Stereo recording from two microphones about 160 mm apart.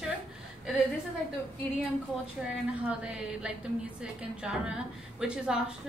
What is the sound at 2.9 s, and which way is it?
A woman's voice, 5° right (ahead or behind).